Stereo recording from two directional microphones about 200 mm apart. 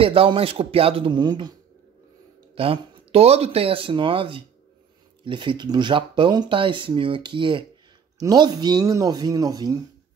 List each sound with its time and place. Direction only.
0.0 s speech: 25° right (ahead or behind)
2.5 s speech: 30° right (ahead or behind)